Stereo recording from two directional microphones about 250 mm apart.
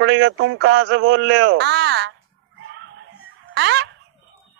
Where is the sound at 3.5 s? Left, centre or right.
Right.